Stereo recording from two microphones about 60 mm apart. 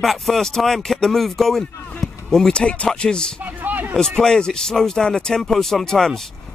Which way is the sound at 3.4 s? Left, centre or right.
Right.